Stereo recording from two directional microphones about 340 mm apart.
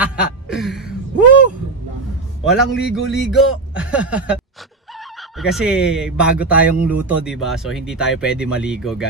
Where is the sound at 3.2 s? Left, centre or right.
Centre.